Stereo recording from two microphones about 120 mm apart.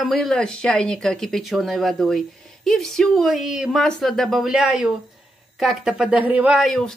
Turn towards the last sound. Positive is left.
turn(degrees=0)  # may be behind; listen again after turning